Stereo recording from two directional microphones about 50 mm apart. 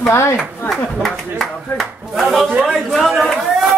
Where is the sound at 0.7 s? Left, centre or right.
Centre.